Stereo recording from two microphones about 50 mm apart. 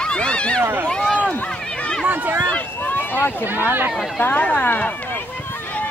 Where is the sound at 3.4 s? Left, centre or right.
Right.